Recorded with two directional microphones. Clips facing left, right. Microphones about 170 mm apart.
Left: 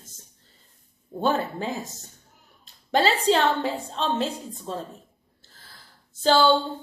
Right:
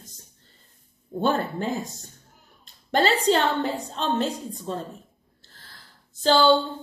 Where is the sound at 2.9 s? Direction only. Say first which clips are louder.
Even; centre (ahead or behind).